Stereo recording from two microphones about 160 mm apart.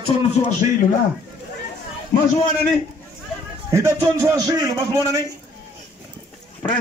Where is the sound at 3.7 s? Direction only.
20° right (ahead or behind).